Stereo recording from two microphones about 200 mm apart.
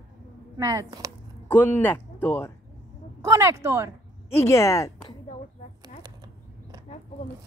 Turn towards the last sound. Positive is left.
turn(degrees=-20)  # may be behind; listen again after turning